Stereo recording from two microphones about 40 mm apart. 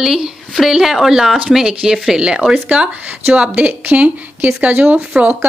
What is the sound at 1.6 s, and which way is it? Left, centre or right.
Speech, centre.